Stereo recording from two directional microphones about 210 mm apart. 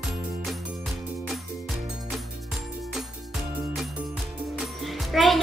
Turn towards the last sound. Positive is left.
turn(degrees=0)  # may be behind; listen again after turning